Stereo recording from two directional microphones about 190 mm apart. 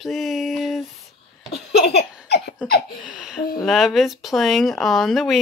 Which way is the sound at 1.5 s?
60° left (ahead or behind).